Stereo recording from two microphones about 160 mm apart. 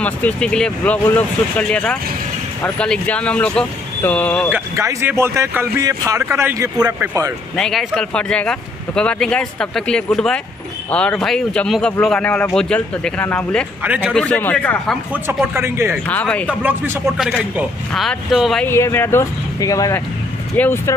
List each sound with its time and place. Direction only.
0.0 s speech: 10° left (ahead or behind)
4.5 s speech: 15° right (ahead or behind)
7.5 s speech: 5° left (ahead or behind)
13.8 s speech: 10° right (ahead or behind)
14.1 s speech: 10° left (ahead or behind)
15.2 s speech: 15° right (ahead or behind)
16.1 s speech: 10° left (ahead or behind)
16.4 s speech: 10° right (ahead or behind)
17.2 s speech: centre (ahead or behind)
18.7 s speech: 15° left (ahead or behind)